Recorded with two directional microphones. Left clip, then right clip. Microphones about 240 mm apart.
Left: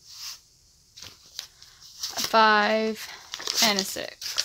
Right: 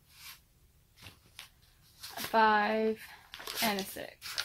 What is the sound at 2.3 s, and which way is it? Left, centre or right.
Speech, left.